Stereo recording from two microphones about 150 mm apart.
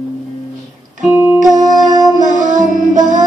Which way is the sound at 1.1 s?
15° right (ahead or behind).